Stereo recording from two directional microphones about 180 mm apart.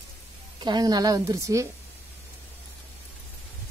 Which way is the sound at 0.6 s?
25° right (ahead or behind).